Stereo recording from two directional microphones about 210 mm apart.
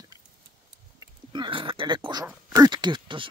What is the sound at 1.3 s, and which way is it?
Speech, 25° right (ahead or behind).